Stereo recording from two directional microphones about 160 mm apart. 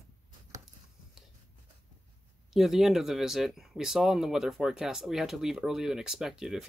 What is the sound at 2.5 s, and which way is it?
Speech, centre (ahead or behind).